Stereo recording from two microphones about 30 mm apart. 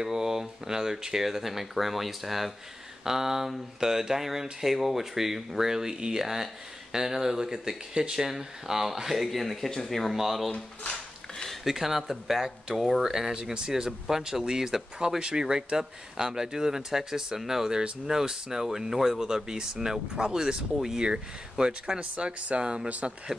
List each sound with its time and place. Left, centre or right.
0.0 s speech: centre
3.0 s speech: centre
5.9 s speech: right
6.2 s speech: centre
9.4 s speech: centre
10.1 s speech: centre
11.6 s speech: centre
13.1 s speech: centre
13.4 s speech: right; by 19.2 s centre
19.2 s speech: right
22.1 s speech: right
22.8 s speech: right